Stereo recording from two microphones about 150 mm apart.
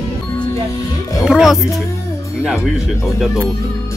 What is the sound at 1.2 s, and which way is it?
Speech, 5° right (ahead or behind).